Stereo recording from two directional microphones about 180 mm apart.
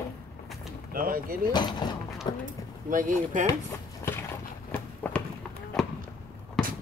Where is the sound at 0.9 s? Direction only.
55° right (ahead or behind).